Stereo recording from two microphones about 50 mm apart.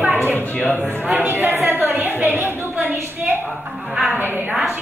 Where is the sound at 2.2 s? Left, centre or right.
Right.